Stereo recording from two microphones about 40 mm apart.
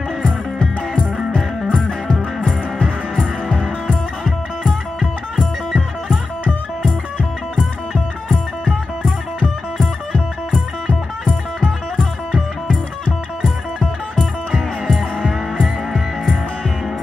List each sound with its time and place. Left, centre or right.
1.7 s music: left
3.2 s music: centre
6.8 s music: left
7.9 s music: centre
9.8 s music: left
13.0 s music: left
15.1 s music: centre